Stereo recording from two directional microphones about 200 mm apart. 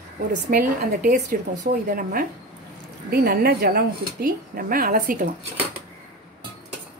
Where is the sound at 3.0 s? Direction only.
50° right (ahead or behind).